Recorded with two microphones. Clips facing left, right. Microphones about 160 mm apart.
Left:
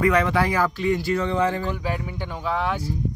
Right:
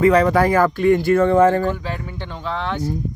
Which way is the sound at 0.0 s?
35° right (ahead or behind).